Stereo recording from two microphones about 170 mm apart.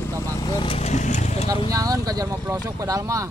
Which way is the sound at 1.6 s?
20° right (ahead or behind).